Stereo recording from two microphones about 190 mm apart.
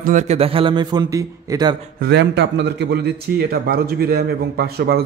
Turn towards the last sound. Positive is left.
turn(degrees=-55)  # may be behind; listen again after turning